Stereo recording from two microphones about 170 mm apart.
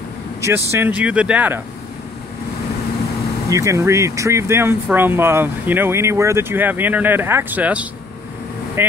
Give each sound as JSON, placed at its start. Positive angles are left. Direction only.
{"t": 0.4, "sound": "speech", "side_deg": -15}
{"t": 3.4, "sound": "speech", "side_deg": -20}